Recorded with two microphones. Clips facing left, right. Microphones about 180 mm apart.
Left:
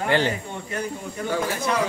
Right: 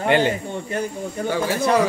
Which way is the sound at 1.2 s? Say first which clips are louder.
Right 4 dB; 35° right (ahead or behind).